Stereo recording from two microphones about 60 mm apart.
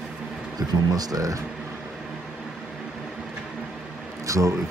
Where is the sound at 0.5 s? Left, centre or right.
Right.